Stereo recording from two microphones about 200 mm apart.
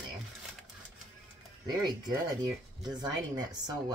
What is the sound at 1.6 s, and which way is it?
Speech, 20° right (ahead or behind).